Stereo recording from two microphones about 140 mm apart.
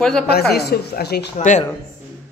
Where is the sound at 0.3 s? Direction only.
90° left.